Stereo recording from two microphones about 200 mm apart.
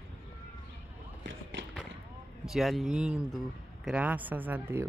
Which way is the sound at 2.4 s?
Centre (ahead or behind).